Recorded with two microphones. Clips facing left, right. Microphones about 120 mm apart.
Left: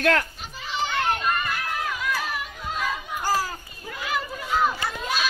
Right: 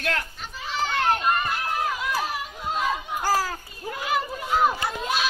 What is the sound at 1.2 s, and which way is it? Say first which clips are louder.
Crowd: right 2 dB; 25° right (ahead or behind).